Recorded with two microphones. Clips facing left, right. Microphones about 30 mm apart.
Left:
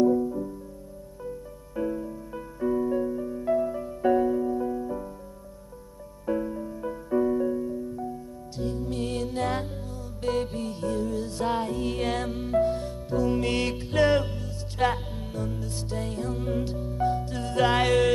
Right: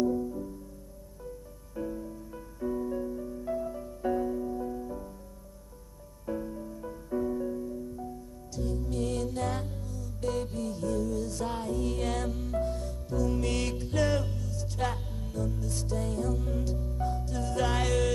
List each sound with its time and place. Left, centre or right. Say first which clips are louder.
0.0 s music: left 7 dB; left
1.8 s music: left 6 dB; left
6.2 s music: left 7 dB; left